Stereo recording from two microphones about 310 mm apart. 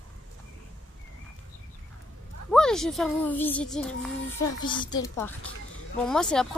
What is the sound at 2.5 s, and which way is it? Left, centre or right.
A woman's voice, centre.